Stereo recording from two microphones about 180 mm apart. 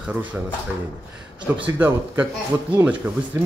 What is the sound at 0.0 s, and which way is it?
Speech, 5° right (ahead or behind).